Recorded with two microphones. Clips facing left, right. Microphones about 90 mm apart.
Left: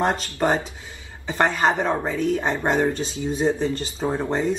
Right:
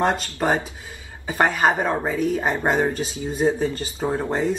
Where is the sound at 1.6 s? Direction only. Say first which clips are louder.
Right 1 dB; 10° right (ahead or behind).